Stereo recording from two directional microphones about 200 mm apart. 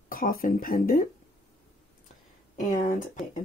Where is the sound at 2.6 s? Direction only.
40° left (ahead or behind).